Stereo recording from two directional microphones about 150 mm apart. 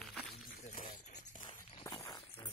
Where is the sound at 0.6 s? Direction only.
50° left (ahead or behind).